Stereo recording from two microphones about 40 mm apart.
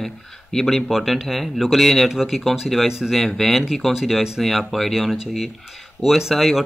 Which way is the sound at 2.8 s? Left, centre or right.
Centre.